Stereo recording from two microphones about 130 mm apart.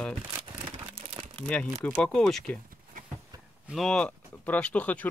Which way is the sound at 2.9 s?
90° right.